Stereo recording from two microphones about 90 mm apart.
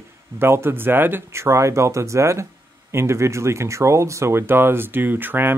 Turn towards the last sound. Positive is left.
turn(degrees=-20)  # may be behind; listen again after turning